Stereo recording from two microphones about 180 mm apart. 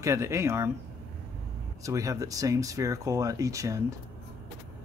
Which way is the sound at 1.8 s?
20° right (ahead or behind).